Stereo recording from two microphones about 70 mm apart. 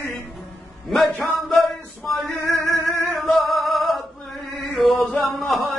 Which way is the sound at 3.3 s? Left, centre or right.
Centre.